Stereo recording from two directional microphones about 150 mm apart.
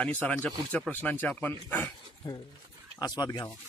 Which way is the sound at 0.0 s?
10° left (ahead or behind).